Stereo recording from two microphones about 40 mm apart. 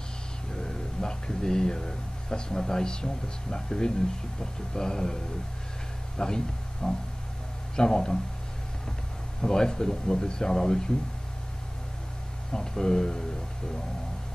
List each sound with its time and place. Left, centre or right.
0.5 s speech: centre
9.4 s speech: centre
12.5 s speech: centre